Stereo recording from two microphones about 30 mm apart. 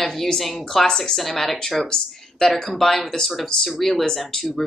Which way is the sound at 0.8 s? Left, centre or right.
Centre.